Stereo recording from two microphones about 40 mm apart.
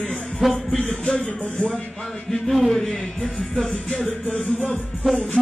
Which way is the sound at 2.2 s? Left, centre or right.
Centre.